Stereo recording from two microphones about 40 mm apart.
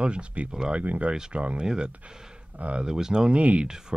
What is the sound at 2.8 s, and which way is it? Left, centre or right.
Speech, centre.